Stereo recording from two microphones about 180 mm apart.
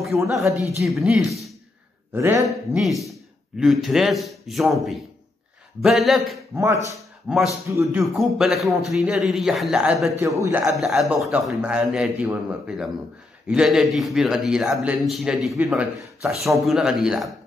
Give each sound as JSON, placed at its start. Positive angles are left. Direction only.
{"t": 0.0, "sound": "speech", "side_deg": 0}
{"t": 2.1, "sound": "a man's voice", "side_deg": -15}
{"t": 2.4, "sound": "speech", "side_deg": 0}
{"t": 6.5, "sound": "a man's voice", "side_deg": -15}
{"t": 7.0, "sound": "speech", "side_deg": 0}
{"t": 7.7, "sound": "a man's voice", "side_deg": -15}
{"t": 8.0, "sound": "speech", "side_deg": 0}
{"t": 10.2, "sound": "a man's voice", "side_deg": -15}
{"t": 10.8, "sound": "speech", "side_deg": 0}